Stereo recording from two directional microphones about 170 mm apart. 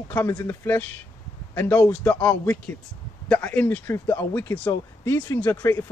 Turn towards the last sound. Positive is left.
turn(degrees=15)  # may be behind; listen again after turning